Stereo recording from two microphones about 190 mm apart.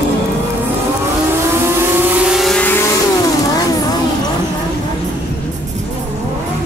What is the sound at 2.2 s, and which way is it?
Vehicle, centre (ahead or behind).